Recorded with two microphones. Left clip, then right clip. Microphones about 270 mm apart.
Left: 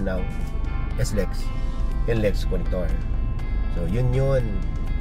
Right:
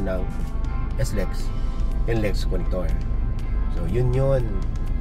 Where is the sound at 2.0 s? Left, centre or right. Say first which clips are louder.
Left 2 dB; centre.